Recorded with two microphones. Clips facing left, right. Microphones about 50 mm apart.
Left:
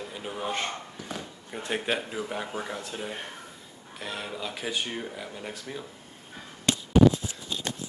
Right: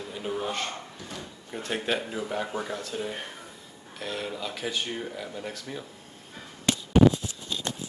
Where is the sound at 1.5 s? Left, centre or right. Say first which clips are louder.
Even; centre.